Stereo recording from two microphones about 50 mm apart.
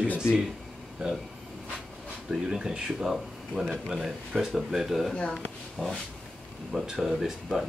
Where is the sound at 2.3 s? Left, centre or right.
Centre.